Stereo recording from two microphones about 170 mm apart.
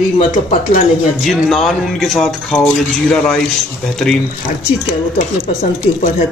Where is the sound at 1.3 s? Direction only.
Centre (ahead or behind).